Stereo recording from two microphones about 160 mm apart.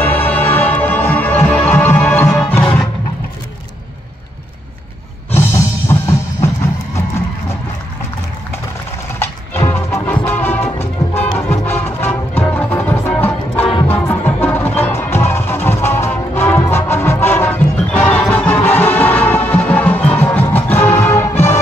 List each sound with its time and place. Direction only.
0.0 s music: 10° left (ahead or behind)
5.3 s music: 15° left (ahead or behind)
9.2 s music: 15° left (ahead or behind)